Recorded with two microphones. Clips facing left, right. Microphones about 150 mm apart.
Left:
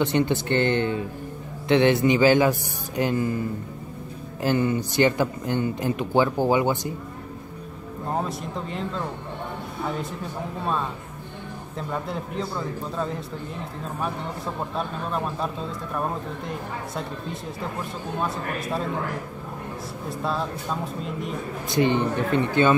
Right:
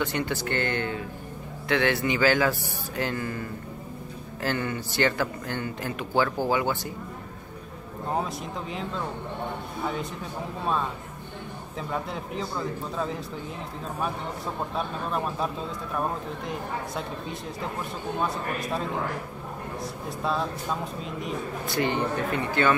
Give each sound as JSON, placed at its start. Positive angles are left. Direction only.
{"t": 0.0, "sound": "speech", "side_deg": 20}
{"t": 8.2, "sound": "a man's voice", "side_deg": 0}
{"t": 11.9, "sound": "a man's voice", "side_deg": 0}
{"t": 14.8, "sound": "a man's voice", "side_deg": 0}
{"t": 20.1, "sound": "a man's voice", "side_deg": 0}
{"t": 21.6, "sound": "speech", "side_deg": 20}